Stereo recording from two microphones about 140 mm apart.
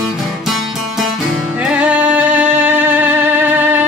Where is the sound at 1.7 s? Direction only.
10° right (ahead or behind).